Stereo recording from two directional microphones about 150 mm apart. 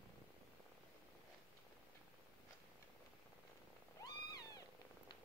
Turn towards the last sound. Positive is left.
turn(degrees=25)  # may be behind; listen again after turning